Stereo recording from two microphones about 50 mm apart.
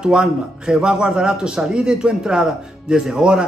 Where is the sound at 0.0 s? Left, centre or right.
Centre.